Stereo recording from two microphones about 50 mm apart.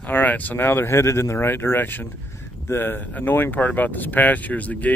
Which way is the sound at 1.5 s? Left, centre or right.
Left.